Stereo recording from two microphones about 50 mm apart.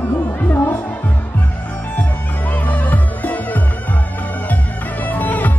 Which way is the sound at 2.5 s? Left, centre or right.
Left.